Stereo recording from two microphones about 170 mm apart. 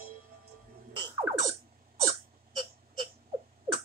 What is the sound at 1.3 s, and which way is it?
Music, 15° right (ahead or behind).